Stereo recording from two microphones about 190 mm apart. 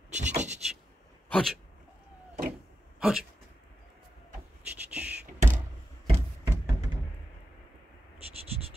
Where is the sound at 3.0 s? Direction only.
Centre (ahead or behind).